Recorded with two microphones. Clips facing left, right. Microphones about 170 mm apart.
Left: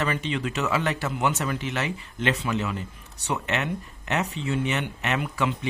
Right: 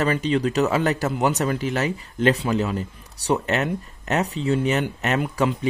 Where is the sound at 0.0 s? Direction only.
40° right (ahead or behind).